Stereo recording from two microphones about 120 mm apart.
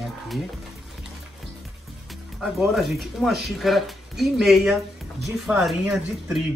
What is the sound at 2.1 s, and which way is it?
Speech, centre (ahead or behind).